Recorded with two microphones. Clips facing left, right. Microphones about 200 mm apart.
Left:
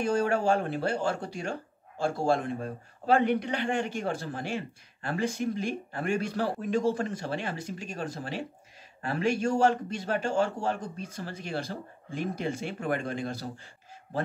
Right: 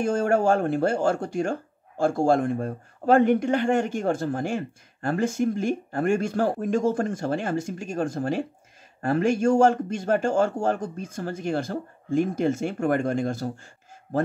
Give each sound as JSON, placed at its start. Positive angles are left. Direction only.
{"t": 0.0, "sound": "speech", "side_deg": -50}